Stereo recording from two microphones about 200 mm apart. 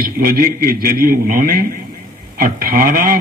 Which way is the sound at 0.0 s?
45° right (ahead or behind).